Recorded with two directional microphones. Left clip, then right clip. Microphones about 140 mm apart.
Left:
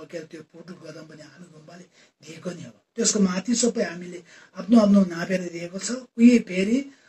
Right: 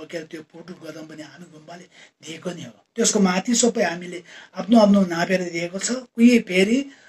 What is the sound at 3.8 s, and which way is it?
Speech, 30° right (ahead or behind).